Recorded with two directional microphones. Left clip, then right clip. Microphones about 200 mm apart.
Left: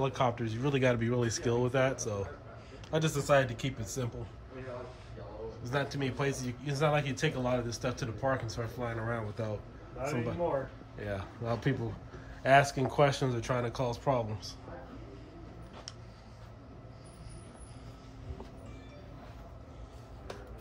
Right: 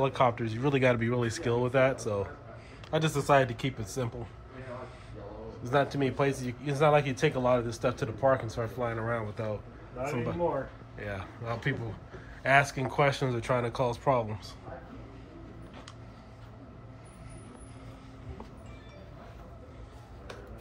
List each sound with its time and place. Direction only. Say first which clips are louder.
0.0 s a man's voice: right 4 dB; 15° left (ahead or behind)
5.6 s a man's voice: right 7 dB; 10° left (ahead or behind)